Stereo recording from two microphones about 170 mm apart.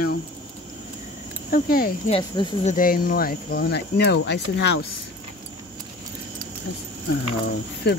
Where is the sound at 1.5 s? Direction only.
60° left (ahead or behind).